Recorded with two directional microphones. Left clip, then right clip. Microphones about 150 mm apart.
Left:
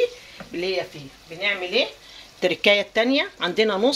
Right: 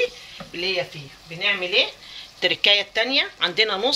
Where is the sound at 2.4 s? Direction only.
75° left (ahead or behind); by 3.9 s 90° left.